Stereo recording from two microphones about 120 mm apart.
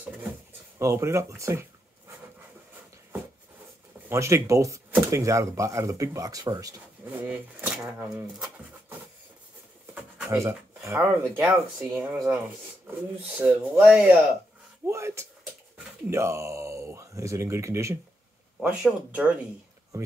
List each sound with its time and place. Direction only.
0.7 s speech: 20° right (ahead or behind)
4.1 s speech: 25° right (ahead or behind)
7.1 s speech: 10° right (ahead or behind)
10.3 s speech: 25° right (ahead or behind)
14.9 s speech: 20° right (ahead or behind)
18.6 s speech: 10° right (ahead or behind)